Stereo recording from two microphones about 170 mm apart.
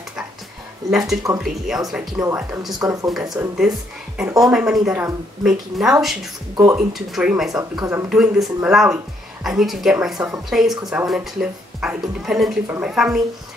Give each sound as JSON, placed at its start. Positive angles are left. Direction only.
{"t": 0.8, "sound": "speech", "side_deg": 0}
{"t": 2.8, "sound": "speech", "side_deg": -20}
{"t": 3.1, "sound": "speech", "side_deg": 0}
{"t": 6.5, "sound": "speech", "side_deg": -25}
{"t": 6.9, "sound": "speech", "side_deg": 0}
{"t": 7.8, "sound": "speech", "side_deg": -15}
{"t": 8.1, "sound": "speech", "side_deg": -5}